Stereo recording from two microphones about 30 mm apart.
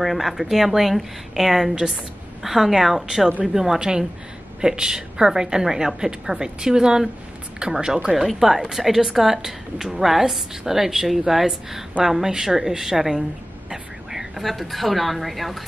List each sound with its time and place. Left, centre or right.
0.0 s a woman's voice: centre
3.6 s a woman's voice: right
13.7 s a sound: centre
14.4 s a woman's voice: centre